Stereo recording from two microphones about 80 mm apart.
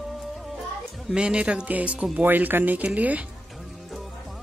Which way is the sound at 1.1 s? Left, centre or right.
Centre.